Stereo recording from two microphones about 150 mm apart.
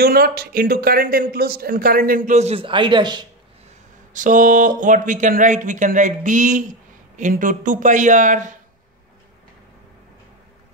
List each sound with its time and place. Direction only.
0.0 s a man's voice: 90° right; by 3.3 s 30° right (ahead or behind)
4.1 s speech: 60° right (ahead or behind)